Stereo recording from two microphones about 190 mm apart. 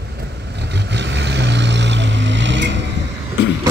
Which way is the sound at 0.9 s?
65° right (ahead or behind).